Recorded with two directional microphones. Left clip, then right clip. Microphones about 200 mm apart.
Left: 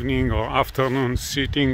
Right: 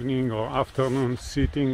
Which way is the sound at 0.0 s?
20° left (ahead or behind).